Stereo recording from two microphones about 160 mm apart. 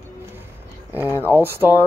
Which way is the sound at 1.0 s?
15° left (ahead or behind).